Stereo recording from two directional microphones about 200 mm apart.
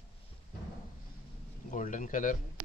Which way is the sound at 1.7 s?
40° left (ahead or behind).